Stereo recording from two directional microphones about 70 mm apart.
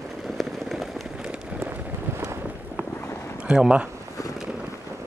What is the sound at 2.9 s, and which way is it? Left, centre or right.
Boat, left.